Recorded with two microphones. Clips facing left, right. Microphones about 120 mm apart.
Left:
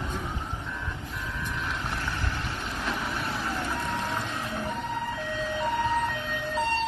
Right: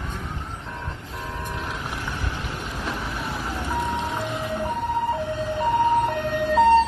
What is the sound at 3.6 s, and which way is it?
Vehicle, 15° right (ahead or behind).